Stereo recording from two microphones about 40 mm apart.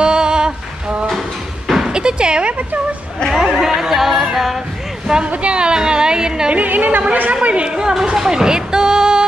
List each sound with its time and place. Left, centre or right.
0.0 s a sound: centre
1.9 s speech: right
3.3 s music: centre
5.2 s a woman's voice: right
6.5 s a woman's voice: right; by 9.2 s centre